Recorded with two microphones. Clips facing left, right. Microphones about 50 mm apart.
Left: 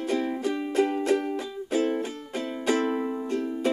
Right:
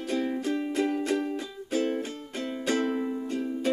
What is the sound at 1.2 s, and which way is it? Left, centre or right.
Music, centre.